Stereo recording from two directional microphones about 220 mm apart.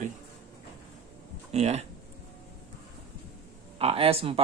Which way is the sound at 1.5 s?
30° right (ahead or behind).